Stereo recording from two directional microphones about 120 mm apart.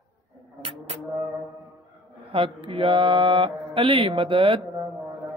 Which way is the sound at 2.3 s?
50° right (ahead or behind).